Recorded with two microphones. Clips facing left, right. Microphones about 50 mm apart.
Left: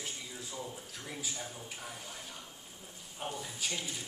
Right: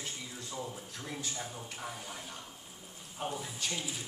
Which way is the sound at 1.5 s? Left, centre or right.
Centre.